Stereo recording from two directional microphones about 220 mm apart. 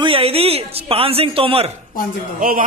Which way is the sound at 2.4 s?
40° right (ahead or behind).